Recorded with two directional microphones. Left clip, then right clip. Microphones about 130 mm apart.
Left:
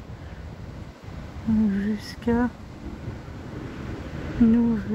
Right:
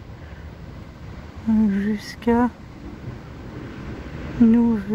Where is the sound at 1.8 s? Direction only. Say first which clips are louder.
Right 3 dB; 30° right (ahead or behind).